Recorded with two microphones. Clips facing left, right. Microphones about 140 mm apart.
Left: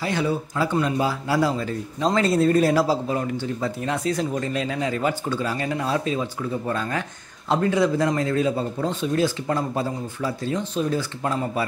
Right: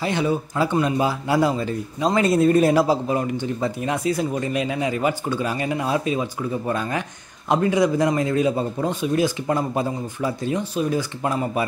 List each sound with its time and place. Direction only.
0.0 s a man's voice: 20° right (ahead or behind)